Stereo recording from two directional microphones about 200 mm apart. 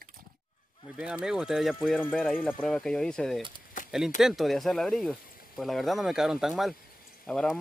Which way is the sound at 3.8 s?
40° left (ahead or behind).